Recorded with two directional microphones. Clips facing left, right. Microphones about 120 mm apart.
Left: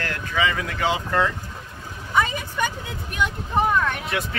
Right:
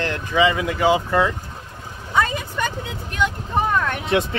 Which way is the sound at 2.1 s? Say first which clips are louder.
Right 2 dB; 5° left (ahead or behind).